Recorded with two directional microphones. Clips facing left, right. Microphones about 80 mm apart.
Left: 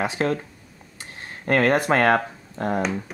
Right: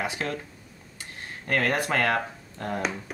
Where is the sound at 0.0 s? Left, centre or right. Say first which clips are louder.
Left 7 dB; left.